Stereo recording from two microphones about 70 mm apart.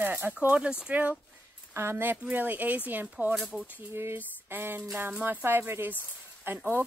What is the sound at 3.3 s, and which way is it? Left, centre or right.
Speech, centre.